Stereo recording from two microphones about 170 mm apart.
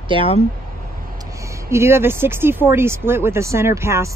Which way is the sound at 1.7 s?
15° right (ahead or behind).